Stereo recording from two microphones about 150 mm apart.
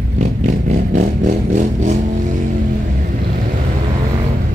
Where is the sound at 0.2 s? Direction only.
55° right (ahead or behind).